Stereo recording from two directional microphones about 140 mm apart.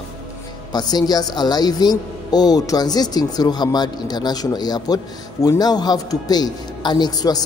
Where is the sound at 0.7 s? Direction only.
30° left (ahead or behind).